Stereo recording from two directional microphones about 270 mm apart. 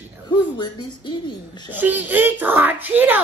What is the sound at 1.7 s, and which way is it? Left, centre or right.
Speech, centre.